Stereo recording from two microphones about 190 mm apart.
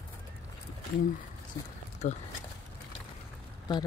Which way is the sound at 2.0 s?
40° left (ahead or behind).